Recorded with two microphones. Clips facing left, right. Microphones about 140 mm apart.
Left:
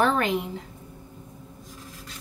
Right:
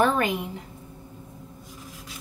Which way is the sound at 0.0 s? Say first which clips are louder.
Even; 5° right (ahead or behind).